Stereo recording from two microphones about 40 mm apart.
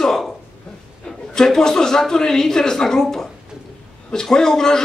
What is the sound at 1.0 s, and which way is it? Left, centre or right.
Speech, centre.